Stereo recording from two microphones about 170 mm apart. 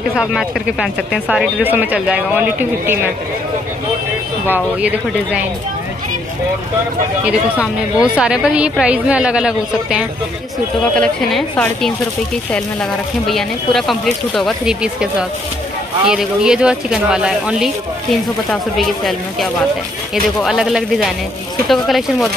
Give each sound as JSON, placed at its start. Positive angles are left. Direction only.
{"t": 0.1, "sound": "speech", "side_deg": -5}
{"t": 4.5, "sound": "speech", "side_deg": -10}
{"t": 7.2, "sound": "speech", "side_deg": -5}
{"t": 13.3, "sound": "speech", "side_deg": 0}